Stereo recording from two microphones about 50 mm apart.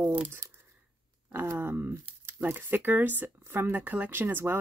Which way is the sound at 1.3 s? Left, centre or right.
Right.